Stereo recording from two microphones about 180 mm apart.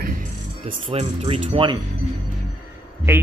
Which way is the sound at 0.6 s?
30° right (ahead or behind).